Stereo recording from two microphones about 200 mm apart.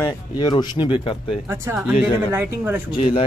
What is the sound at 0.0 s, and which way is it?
Speech, 20° left (ahead or behind).